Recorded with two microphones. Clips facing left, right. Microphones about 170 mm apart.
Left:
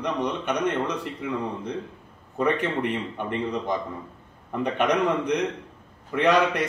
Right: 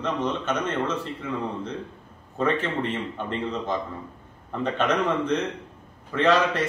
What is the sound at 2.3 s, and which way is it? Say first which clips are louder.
A man's voice: left 1 dB; 15° left (ahead or behind).